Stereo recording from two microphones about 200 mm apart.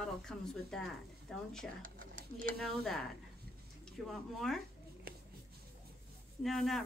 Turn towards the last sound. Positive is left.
turn(degrees=0)  # may be behind; listen again after turning